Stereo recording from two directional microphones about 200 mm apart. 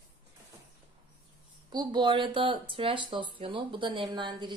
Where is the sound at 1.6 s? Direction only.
25° right (ahead or behind).